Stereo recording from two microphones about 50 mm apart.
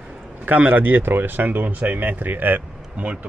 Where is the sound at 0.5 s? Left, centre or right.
Right.